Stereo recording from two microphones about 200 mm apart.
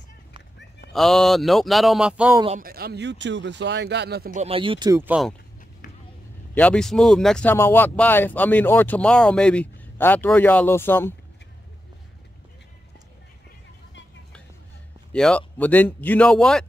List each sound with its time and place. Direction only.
0.9 s speech: centre (ahead or behind)
2.6 s speech: 50° right (ahead or behind)
4.4 s speech: 25° right (ahead or behind)
5.0 s speech: 5° right (ahead or behind)
6.5 s speech: 5° left (ahead or behind)
15.1 s speech: 5° left (ahead or behind)